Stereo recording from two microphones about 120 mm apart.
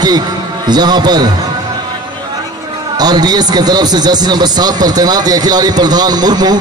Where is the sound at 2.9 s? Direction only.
35° right (ahead or behind).